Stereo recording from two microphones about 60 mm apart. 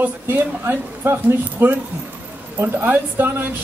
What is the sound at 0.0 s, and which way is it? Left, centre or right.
Speech, right.